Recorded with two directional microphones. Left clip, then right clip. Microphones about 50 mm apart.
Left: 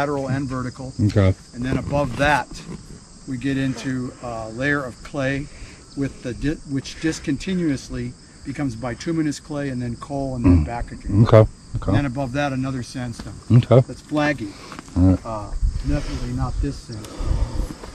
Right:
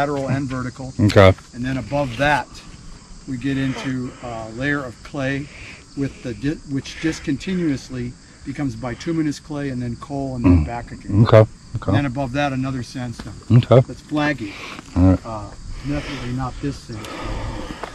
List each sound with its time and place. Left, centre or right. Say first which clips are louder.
0.1 s speech: right 1 dB; centre
1.0 s speech: right 10 dB; left
1.6 s speech: even; centre
14.5 s speech: right 5 dB; centre
15.1 s speech: even; centre
16.0 s speech: right 3 dB; centre
16.6 s speech: right 1 dB; centre
17.3 s a sound: right 3 dB; centre